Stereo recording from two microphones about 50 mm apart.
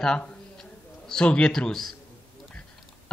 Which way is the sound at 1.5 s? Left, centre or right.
Centre.